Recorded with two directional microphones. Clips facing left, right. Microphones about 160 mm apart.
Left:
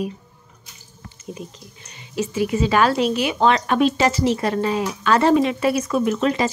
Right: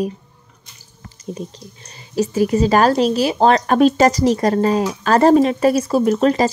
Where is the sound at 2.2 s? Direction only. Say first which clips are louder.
Right 5 dB; 40° right (ahead or behind).